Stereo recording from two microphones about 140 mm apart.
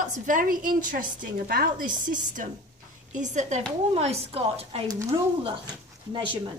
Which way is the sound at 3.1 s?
60° right (ahead or behind).